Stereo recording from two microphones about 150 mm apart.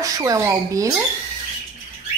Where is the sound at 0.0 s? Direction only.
25° right (ahead or behind).